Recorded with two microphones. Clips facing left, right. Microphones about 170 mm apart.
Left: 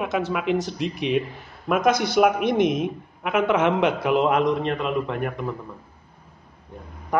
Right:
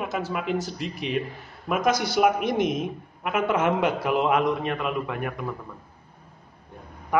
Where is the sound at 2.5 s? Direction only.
60° left (ahead or behind).